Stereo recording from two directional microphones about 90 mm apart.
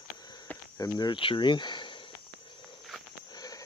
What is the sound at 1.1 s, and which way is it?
Speech, 75° left (ahead or behind).